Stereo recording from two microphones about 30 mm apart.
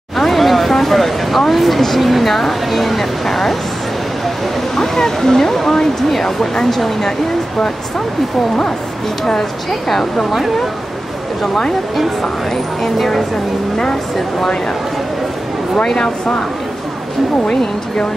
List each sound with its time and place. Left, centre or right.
0.2 s a sound: centre
2.0 s speech: centre
4.7 s speech: centre
9.2 s speech: centre
12.8 s speech: centre